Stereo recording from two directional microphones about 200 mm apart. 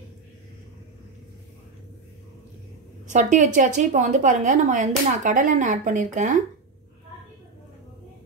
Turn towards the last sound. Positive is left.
turn(degrees=-40)  # may be behind; listen again after turning